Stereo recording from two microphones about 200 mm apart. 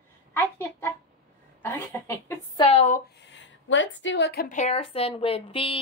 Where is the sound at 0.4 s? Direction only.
10° left (ahead or behind).